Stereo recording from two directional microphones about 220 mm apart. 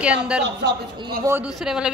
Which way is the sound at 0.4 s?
50° right (ahead or behind).